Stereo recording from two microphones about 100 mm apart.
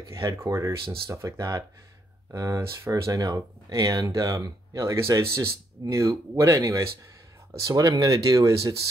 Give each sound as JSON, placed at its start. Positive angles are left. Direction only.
{"t": 0.1, "sound": "speech", "side_deg": -30}